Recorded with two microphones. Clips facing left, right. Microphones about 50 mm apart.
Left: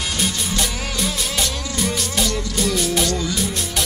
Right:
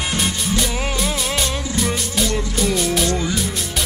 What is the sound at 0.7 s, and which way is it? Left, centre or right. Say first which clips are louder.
Music: right 3 dB; right.